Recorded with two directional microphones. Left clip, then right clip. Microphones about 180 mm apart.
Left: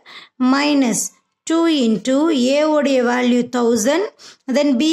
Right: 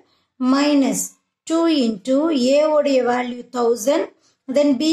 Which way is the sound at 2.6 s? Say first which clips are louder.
Left 1 dB; 40° left (ahead or behind).